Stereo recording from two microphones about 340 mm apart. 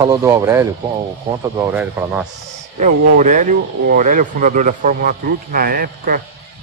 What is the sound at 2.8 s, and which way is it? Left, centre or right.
Speech, right.